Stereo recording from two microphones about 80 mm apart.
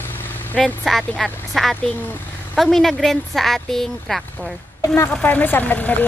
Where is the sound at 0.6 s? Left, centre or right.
Centre.